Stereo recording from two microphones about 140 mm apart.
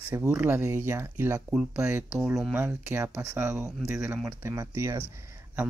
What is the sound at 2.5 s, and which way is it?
Speech, 15° right (ahead or behind).